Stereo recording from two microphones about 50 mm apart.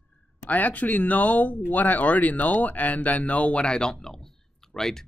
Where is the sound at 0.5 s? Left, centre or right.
Left.